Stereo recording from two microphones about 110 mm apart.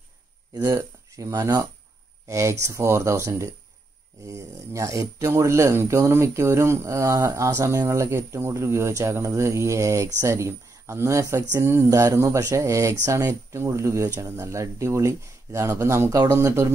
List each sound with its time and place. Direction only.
0.6 s speech: 30° right (ahead or behind)